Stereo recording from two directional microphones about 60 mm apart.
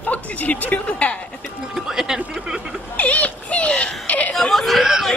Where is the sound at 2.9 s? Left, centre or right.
Left.